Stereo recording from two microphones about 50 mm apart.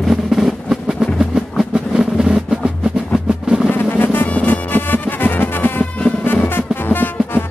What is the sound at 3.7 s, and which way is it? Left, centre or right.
Music, left.